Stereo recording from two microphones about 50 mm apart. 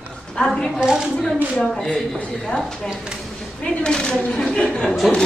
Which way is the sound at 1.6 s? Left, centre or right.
Centre.